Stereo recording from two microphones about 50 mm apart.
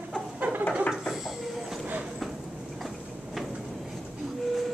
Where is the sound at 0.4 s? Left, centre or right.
Right.